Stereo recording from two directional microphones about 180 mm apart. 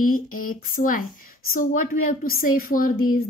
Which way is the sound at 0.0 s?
50° left (ahead or behind).